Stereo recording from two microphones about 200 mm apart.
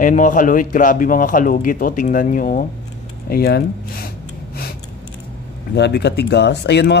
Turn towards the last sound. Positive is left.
turn(degrees=55)  # may be behind; listen again after turning